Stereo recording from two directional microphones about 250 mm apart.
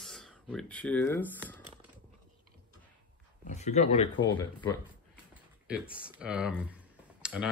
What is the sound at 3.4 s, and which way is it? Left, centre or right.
Speech, left.